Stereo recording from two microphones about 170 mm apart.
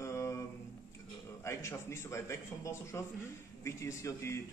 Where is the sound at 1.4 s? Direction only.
15° left (ahead or behind).